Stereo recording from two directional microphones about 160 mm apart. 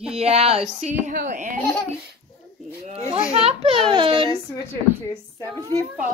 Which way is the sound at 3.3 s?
40° right (ahead or behind).